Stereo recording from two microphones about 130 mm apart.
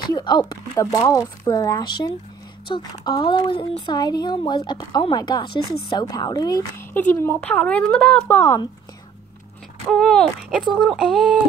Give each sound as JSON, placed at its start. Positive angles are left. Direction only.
{"t": 0.0, "sound": "speech", "side_deg": 35}
{"t": 0.7, "sound": "a woman's voice", "side_deg": 25}
{"t": 3.9, "sound": "a woman's voice", "side_deg": 30}
{"t": 6.9, "sound": "speech", "side_deg": 15}
{"t": 8.4, "sound": "speech", "side_deg": 20}
{"t": 9.8, "sound": "speech", "side_deg": 5}